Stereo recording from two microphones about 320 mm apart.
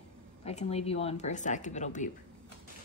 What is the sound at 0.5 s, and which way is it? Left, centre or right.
A woman's voice, centre.